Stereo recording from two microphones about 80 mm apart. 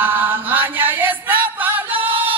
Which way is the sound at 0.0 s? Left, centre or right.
Right.